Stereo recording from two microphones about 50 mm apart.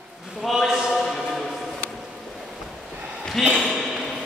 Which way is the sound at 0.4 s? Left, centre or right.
Centre.